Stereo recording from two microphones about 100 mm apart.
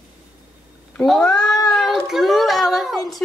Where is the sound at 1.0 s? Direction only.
5° left (ahead or behind).